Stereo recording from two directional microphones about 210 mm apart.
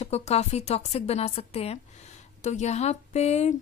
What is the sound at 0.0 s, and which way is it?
A woman's voice, 30° left (ahead or behind).